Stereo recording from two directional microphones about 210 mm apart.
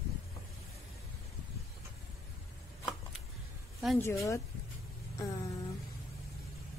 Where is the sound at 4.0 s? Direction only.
15° left (ahead or behind).